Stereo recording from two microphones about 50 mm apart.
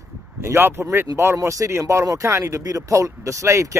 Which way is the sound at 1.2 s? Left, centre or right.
Right.